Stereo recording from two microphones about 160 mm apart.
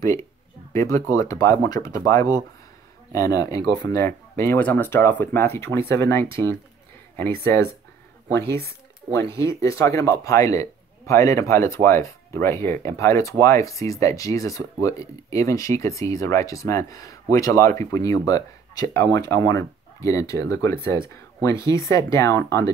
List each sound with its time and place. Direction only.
0.7 s speech: 20° left (ahead or behind)